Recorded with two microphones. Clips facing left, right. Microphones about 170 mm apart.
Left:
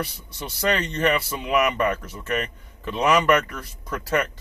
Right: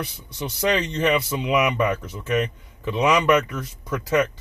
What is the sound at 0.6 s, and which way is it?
Speech, 15° right (ahead or behind).